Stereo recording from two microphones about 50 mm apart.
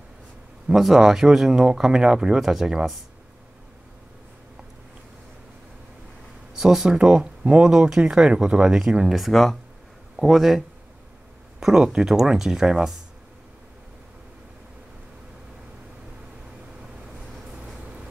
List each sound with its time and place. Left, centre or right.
0.7 s speech: centre
6.6 s speech: centre
6.9 s speech: centre
11.6 s speech: centre